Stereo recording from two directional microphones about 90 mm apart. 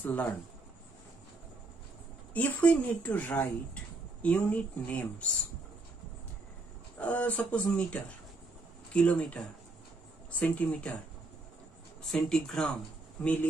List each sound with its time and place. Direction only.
0.0 s a woman's voice: 15° left (ahead or behind)
2.3 s a woman's voice: 15° left (ahead or behind)
7.0 s a woman's voice: 15° left (ahead or behind)
10.5 s a woman's voice: 15° left (ahead or behind)
12.0 s a woman's voice: 5° left (ahead or behind)